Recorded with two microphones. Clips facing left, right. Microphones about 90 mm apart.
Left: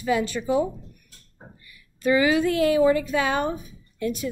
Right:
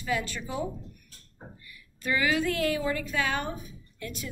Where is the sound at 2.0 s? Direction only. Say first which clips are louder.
Left 7 dB; 20° left (ahead or behind).